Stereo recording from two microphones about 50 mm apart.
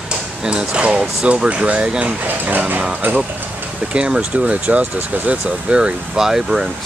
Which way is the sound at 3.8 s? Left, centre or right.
Right.